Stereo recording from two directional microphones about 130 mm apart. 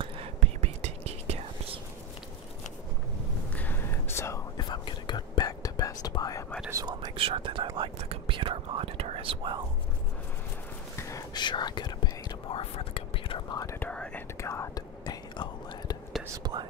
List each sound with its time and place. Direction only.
0.4 s whispering: 60° right (ahead or behind)
3.5 s whispering: 15° left (ahead or behind)
4.6 s whispering: 35° left (ahead or behind)
6.7 s whispering: 30° right (ahead or behind)
7.2 s whispering: 45° right (ahead or behind)
11.0 s whispering: 25° left (ahead or behind)
13.7 s whispering: 10° left (ahead or behind)
14.4 s whispering: 25° left (ahead or behind)
16.5 s whispering: 30° right (ahead or behind)